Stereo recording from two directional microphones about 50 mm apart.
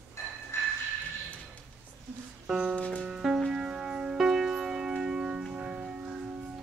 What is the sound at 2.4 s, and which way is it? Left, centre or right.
Music, centre.